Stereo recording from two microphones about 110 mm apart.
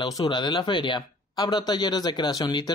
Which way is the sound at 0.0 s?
40° left (ahead or behind).